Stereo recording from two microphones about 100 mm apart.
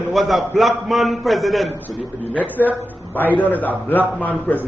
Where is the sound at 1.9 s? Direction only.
15° left (ahead or behind).